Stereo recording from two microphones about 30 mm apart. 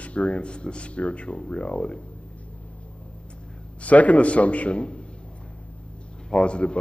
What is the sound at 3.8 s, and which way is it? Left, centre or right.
A man's voice, left.